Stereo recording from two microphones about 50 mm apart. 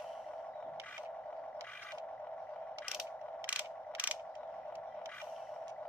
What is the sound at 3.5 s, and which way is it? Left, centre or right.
Mechanisms, right.